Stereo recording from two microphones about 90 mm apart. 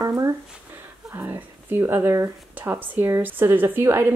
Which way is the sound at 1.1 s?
25° right (ahead or behind).